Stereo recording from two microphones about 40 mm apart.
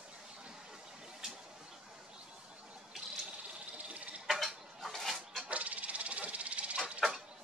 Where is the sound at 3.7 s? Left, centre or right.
Right.